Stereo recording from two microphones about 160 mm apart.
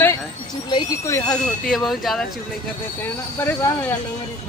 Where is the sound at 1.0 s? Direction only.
20° left (ahead or behind).